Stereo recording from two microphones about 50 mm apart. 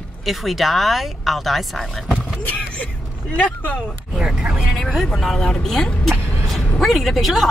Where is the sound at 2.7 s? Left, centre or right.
Left.